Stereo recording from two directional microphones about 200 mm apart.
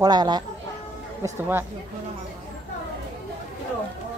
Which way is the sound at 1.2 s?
10° right (ahead or behind).